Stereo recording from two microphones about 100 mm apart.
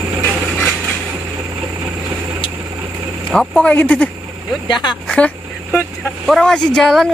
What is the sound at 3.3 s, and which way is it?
Speech, 5° left (ahead or behind).